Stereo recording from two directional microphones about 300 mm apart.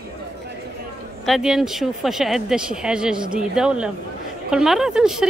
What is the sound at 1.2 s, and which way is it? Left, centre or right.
Speech, centre.